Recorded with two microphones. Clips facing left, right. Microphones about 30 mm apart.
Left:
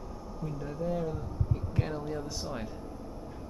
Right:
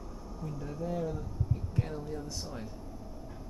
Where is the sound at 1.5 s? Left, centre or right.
Left.